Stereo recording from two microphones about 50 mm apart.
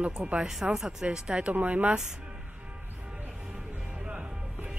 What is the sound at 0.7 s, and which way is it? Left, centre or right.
Speech, centre.